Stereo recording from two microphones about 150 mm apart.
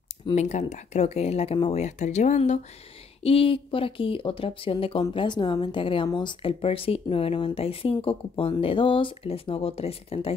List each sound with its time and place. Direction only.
0.3 s speech: 50° left (ahead or behind)
3.2 s speech: 40° left (ahead or behind)